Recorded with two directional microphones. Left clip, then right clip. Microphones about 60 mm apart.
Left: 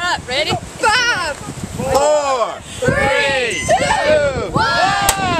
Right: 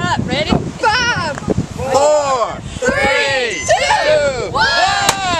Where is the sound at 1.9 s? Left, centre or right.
Right.